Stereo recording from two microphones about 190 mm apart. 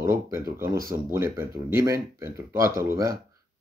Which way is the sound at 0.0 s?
15° right (ahead or behind).